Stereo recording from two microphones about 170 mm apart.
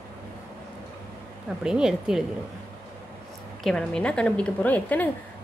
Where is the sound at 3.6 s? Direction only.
5° left (ahead or behind).